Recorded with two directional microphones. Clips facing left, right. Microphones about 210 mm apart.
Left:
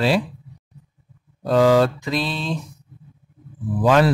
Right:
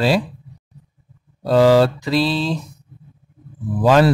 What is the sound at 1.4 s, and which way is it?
Speech, 35° right (ahead or behind).